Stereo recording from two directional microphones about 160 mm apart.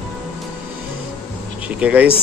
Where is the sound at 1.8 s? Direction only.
10° right (ahead or behind).